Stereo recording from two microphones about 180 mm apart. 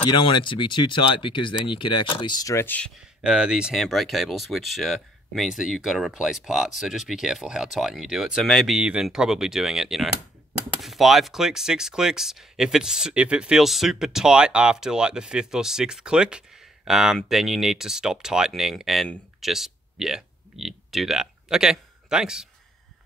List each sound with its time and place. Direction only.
0.0 s speech: 25° left (ahead or behind); by 2.9 s 10° left (ahead or behind)
3.3 s speech: 5° right (ahead or behind)